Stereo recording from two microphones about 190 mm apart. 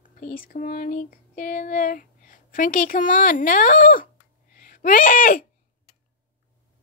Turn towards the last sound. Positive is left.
turn(degrees=45)  # may be behind; listen again after turning